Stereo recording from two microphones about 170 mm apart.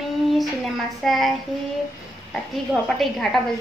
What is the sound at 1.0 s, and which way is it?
Speech, centre (ahead or behind).